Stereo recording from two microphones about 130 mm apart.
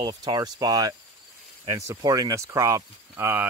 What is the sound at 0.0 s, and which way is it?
Speech, 30° right (ahead or behind).